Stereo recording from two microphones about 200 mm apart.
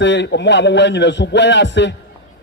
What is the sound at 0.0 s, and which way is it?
A man's voice, 60° left (ahead or behind).